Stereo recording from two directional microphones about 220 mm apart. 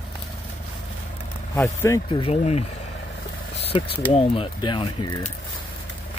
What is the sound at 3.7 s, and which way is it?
Speech, 25° left (ahead or behind).